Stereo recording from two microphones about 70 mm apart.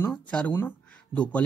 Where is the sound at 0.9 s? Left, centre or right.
Centre.